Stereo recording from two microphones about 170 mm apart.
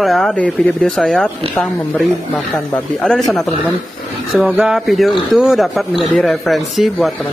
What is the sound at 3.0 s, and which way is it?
A man's voice, centre (ahead or behind).